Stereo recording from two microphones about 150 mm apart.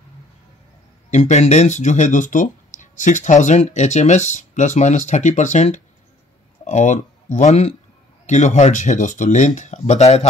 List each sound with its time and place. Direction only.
1.1 s speech: 50° left (ahead or behind)